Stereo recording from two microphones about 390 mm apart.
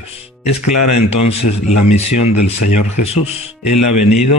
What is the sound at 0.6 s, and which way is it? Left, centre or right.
Speech, left.